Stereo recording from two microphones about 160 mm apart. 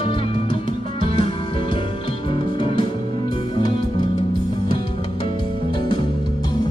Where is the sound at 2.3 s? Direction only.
30° left (ahead or behind).